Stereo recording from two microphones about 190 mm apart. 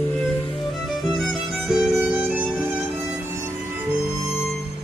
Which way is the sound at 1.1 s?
Centre (ahead or behind).